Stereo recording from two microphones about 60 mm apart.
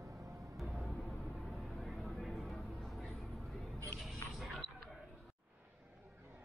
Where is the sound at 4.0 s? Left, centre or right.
Centre.